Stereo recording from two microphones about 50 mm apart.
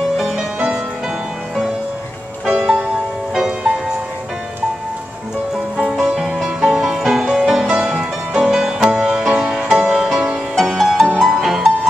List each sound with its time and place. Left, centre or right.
2.4 s music: centre
5.9 s music: centre
6.4 s music: centre
10.8 s music: centre